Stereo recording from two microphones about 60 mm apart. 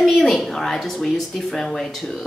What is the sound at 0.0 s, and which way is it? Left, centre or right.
Speech, centre.